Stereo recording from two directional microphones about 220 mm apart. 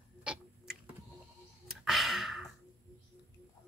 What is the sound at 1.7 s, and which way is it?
Sigh, centre (ahead or behind).